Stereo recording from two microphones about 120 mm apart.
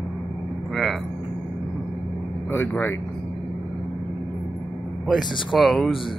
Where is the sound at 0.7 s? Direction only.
Centre (ahead or behind).